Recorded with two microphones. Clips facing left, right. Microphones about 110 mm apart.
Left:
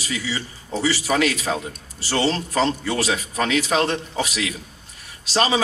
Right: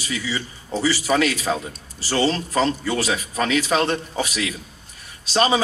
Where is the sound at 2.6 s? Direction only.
30° left (ahead or behind).